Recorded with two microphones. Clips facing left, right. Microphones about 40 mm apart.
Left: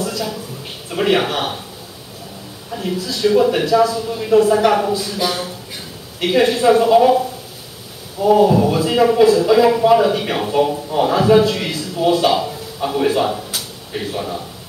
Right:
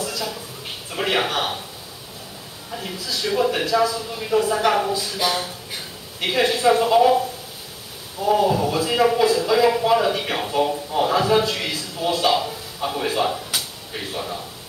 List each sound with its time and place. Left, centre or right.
0.0 s a sound: centre
0.8 s speech: centre
2.7 s speech: centre
8.6 s speech: centre
8.9 s speech: centre